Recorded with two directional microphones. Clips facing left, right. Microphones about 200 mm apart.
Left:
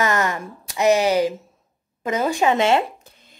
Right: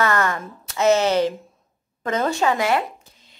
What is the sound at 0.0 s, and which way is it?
A woman's voice, 15° left (ahead or behind).